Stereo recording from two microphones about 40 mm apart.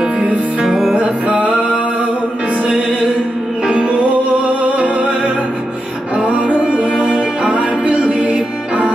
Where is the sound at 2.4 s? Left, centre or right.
Right.